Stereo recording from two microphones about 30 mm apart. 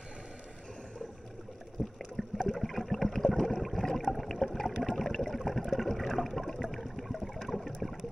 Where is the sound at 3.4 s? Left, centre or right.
Centre.